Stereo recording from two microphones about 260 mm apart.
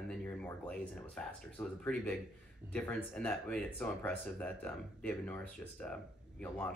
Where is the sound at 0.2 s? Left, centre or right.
Centre.